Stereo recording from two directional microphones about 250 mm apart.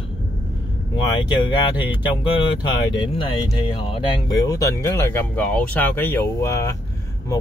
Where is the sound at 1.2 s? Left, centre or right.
Centre.